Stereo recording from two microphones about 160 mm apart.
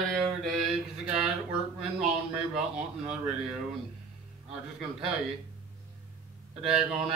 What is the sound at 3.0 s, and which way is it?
Mantra, 5° right (ahead or behind).